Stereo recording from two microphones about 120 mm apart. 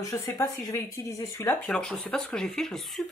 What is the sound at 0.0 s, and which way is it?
Speech, 25° left (ahead or behind).